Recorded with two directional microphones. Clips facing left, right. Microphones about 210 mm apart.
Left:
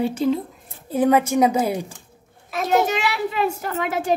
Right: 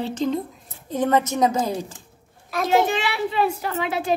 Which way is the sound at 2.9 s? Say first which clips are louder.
Left 1 dB; 40° left (ahead or behind).